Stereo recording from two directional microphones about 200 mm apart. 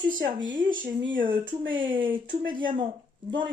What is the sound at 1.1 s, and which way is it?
Speech, 45° right (ahead or behind).